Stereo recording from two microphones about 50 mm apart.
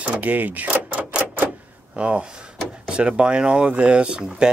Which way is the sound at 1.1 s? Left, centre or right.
Right.